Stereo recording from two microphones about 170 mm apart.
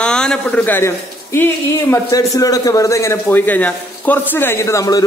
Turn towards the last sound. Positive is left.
turn(degrees=20)  # may be behind; listen again after turning